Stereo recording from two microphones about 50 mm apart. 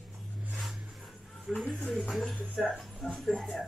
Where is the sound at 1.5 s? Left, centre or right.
Centre.